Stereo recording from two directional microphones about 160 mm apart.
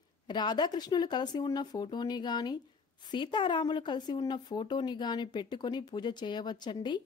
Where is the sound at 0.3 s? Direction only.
25° left (ahead or behind).